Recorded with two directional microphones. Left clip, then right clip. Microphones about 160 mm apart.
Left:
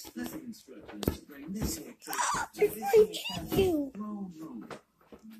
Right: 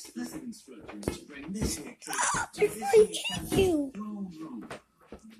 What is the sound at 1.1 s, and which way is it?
Speech, 50° left (ahead or behind).